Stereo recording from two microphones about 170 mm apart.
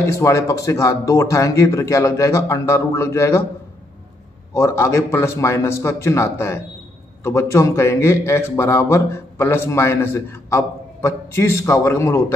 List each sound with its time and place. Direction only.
0.0 s a man's voice: 15° left (ahead or behind)
4.6 s a man's voice: 15° left (ahead or behind)